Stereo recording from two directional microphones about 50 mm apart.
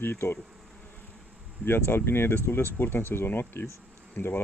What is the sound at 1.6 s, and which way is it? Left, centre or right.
Speech, left.